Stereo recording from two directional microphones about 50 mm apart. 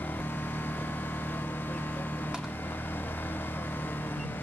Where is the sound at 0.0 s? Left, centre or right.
Left.